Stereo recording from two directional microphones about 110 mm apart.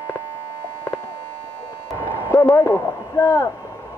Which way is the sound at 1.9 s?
20° left (ahead or behind).